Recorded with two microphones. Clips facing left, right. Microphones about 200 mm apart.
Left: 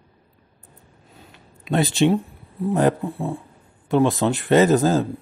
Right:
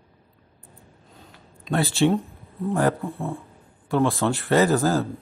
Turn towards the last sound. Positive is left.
turn(degrees=15)  # may be behind; listen again after turning